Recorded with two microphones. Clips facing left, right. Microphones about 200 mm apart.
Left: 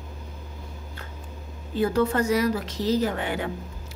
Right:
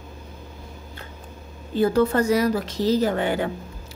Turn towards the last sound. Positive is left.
turn(degrees=-35)  # may be behind; listen again after turning